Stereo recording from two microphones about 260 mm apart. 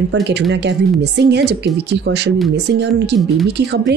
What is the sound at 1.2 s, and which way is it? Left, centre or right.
A woman's voice, right.